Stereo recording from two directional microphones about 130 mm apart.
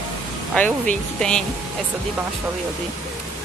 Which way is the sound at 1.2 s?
5° left (ahead or behind).